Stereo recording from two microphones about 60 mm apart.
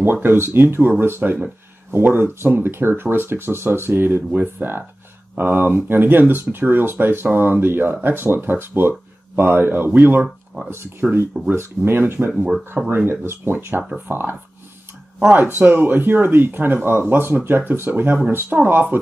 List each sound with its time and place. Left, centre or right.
0.0 s speech: right
10.2 s a sound: centre
11.0 s speech: centre
11.5 s speech: right
15.3 s speech: right